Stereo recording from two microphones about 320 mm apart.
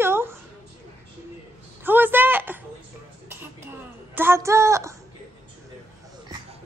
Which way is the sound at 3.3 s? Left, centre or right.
Centre.